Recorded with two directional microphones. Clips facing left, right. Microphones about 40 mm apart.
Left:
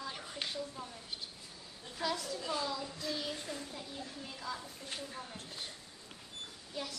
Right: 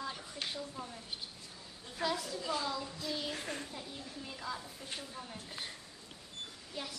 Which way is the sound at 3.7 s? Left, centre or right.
Centre.